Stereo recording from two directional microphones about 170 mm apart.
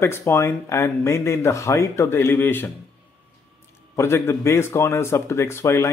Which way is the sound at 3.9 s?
15° left (ahead or behind).